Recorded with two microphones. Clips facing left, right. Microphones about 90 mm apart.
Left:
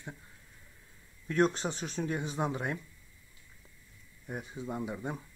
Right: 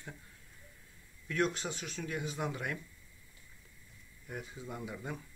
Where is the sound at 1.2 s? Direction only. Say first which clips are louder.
Left 5 dB; 35° left (ahead or behind).